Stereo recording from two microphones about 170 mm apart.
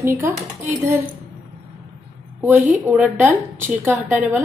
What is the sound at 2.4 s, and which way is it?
A woman's voice, 10° right (ahead or behind).